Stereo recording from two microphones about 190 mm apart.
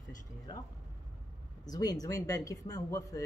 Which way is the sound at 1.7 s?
20° left (ahead or behind).